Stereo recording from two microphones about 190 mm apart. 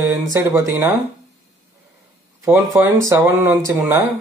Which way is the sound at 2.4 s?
15° right (ahead or behind).